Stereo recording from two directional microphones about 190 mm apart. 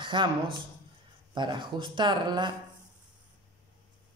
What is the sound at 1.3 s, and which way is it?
A woman's voice, 25° right (ahead or behind).